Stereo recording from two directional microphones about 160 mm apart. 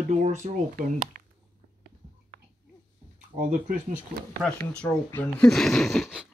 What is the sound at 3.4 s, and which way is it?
Speech, 55° right (ahead or behind).